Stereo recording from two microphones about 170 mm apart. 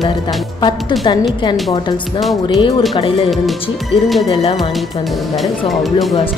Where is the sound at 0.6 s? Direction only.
25° left (ahead or behind).